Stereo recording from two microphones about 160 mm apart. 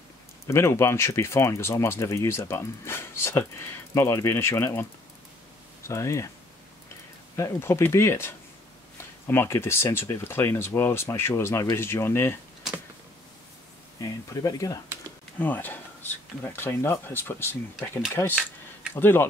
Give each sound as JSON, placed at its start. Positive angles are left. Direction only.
{"t": 0.5, "sound": "speech", "side_deg": 15}
{"t": 5.9, "sound": "speech", "side_deg": 20}
{"t": 7.3, "sound": "speech", "side_deg": 20}
{"t": 9.3, "sound": "speech", "side_deg": 15}
{"t": 13.9, "sound": "speech", "side_deg": 20}
{"t": 15.3, "sound": "speech", "side_deg": 10}